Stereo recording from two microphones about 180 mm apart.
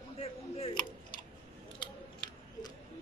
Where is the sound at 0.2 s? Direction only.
35° left (ahead or behind).